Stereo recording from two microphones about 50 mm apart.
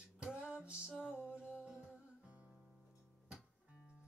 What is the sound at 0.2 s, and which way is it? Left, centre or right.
Music, centre.